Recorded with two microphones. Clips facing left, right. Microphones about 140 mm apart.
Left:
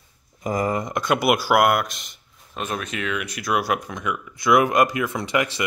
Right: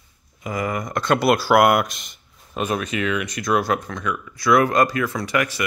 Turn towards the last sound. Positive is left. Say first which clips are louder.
# even
turn(degrees=20)  # may be behind; listen again after turning